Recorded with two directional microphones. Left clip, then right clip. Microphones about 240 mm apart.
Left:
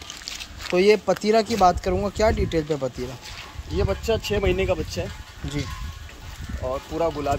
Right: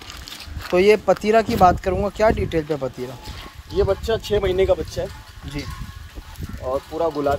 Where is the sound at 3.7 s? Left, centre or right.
Right.